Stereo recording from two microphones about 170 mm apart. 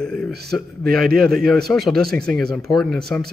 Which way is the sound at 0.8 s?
60° right (ahead or behind).